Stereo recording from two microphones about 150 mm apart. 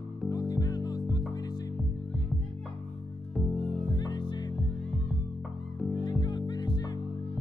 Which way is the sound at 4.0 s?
30° left (ahead or behind).